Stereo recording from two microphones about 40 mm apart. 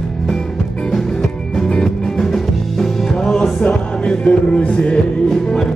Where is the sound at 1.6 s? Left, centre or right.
Left.